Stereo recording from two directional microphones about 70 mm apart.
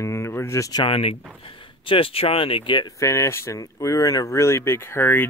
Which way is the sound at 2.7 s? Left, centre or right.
Left.